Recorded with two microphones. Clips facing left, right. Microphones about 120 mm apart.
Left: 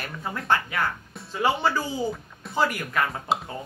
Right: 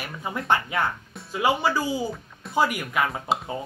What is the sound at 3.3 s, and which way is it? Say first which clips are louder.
Speech: even; centre (ahead or behind).